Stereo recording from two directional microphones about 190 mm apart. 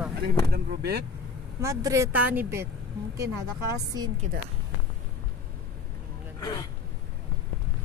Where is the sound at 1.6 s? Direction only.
15° right (ahead or behind).